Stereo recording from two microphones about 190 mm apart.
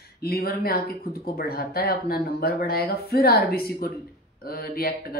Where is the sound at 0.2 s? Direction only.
55° left (ahead or behind).